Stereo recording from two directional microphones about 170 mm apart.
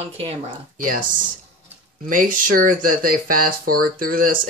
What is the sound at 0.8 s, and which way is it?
Speech, 55° right (ahead or behind).